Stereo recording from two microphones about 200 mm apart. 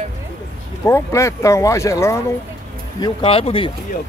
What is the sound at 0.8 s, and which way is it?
Speech, 15° left (ahead or behind).